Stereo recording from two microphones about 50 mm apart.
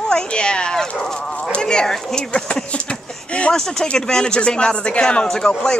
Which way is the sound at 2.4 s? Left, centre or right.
Left.